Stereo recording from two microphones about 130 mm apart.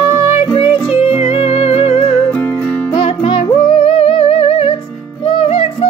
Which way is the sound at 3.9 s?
45° left (ahead or behind).